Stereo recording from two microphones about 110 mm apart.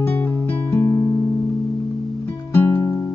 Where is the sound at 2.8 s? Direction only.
30° left (ahead or behind).